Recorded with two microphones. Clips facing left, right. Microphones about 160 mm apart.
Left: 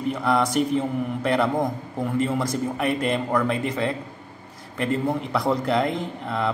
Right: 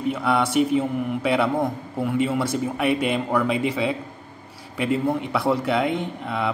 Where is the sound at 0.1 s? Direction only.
5° right (ahead or behind).